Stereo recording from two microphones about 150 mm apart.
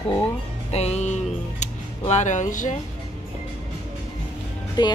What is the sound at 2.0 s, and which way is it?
Speech, 50° left (ahead or behind).